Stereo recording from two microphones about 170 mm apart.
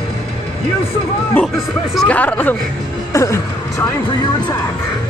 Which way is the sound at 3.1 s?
20° left (ahead or behind).